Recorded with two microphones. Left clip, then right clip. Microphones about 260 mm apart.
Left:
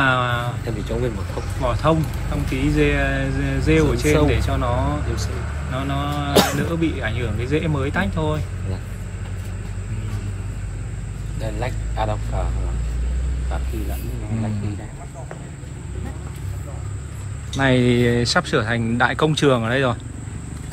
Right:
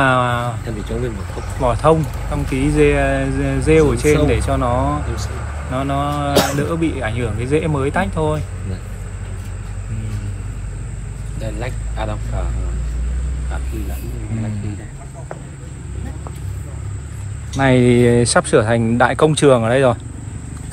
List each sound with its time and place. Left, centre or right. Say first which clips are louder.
0.0 s a sound: right 4 dB; centre
0.7 s speech: even; left
1.6 s speech: right 6 dB; centre
11.4 s speech: even; left
17.6 s speech: right 4 dB; centre